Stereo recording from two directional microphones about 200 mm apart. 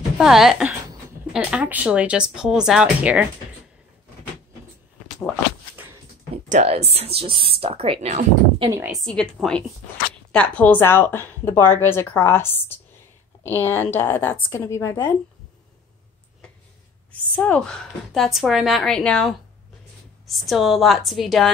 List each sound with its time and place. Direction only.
0.2 s a woman's voice: centre (ahead or behind)
5.0 s a sound: 5° left (ahead or behind)
6.3 s speech: 30° right (ahead or behind)
8.5 s speech: 20° right (ahead or behind)
8.8 s a woman's voice: centre (ahead or behind)
17.1 s a woman's voice: 5° left (ahead or behind)